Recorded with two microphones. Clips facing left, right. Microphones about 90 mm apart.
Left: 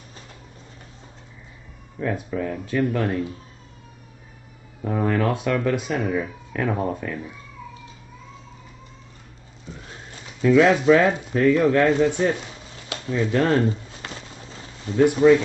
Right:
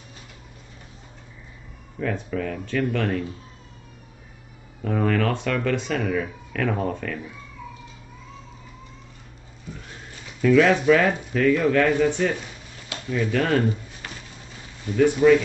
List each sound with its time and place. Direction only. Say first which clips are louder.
2.0 s speech: left 1 dB; 25° left (ahead or behind)
4.8 s speech: even; 20° left (ahead or behind)
10.4 s speech: left 1 dB; 25° left (ahead or behind)
12.9 s a sound: left 2 dB; 25° left (ahead or behind)
14.9 s speech: left 1 dB; 25° left (ahead or behind)